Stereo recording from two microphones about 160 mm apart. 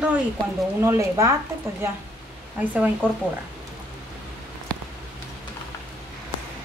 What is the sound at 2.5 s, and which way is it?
Speech, 10° right (ahead or behind).